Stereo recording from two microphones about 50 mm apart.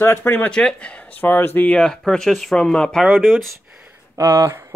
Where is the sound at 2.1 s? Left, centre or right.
Centre.